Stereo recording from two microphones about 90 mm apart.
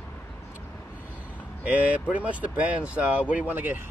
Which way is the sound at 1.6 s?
15° right (ahead or behind).